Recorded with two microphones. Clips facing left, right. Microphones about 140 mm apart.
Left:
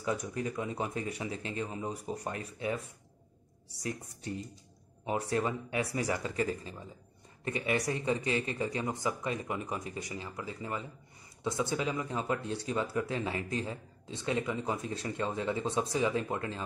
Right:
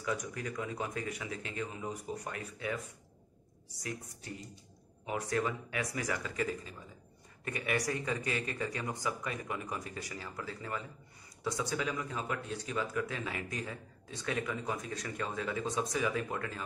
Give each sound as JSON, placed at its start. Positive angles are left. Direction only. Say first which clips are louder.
{"t": 0.0, "sound": "speech", "louder": "left 3 dB", "side_deg": 30}
{"t": 3.8, "sound": "speech", "louder": "left 4 dB", "side_deg": 30}